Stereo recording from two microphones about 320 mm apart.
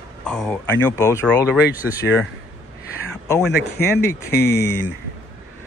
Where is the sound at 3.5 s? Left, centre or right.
Left.